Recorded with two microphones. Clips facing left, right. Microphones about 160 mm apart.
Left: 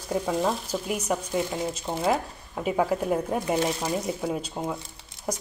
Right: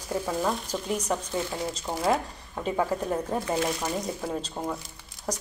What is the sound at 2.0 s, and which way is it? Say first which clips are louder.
Speech: even; 5° left (ahead or behind).